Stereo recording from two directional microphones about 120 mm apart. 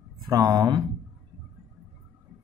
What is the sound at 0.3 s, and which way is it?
Speech, 30° right (ahead or behind).